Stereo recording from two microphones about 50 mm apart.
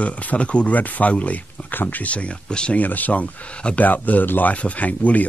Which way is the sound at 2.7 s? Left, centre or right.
Left.